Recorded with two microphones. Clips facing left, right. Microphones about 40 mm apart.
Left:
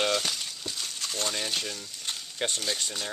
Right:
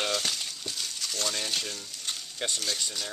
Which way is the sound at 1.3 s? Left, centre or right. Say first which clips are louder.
Left 1 dB; centre.